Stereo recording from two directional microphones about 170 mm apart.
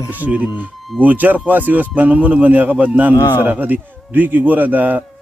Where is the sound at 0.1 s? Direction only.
10° right (ahead or behind).